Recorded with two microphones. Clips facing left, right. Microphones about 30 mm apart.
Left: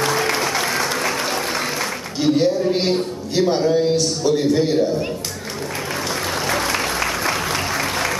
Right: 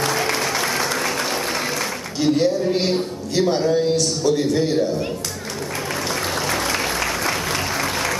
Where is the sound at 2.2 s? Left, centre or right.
Centre.